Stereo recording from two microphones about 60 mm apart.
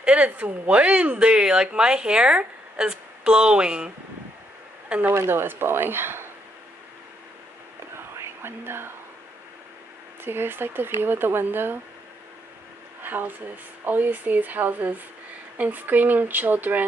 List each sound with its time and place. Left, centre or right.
0.0 s speech: centre
5.0 s speech: right
7.9 s whispering: right
10.2 s speech: right
13.0 s speech: right